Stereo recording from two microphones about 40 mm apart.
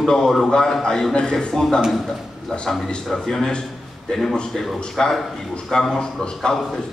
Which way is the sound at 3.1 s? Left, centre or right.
Centre.